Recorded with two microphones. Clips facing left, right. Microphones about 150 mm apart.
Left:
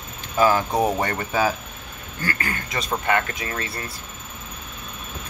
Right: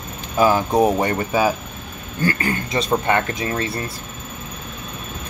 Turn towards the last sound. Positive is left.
turn(degrees=-30)  # may be behind; listen again after turning